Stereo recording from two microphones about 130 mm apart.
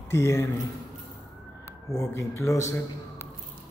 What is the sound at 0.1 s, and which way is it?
Speech, 20° left (ahead or behind).